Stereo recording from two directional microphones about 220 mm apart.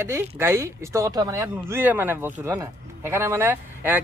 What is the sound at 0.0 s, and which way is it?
A man's voice, 10° right (ahead or behind).